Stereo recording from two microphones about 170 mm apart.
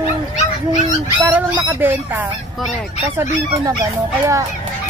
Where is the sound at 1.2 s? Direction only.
10° right (ahead or behind).